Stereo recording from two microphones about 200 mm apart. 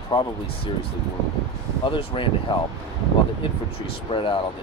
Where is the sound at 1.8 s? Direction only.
25° left (ahead or behind).